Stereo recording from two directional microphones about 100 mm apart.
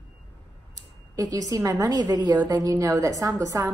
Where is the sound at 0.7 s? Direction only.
35° right (ahead or behind).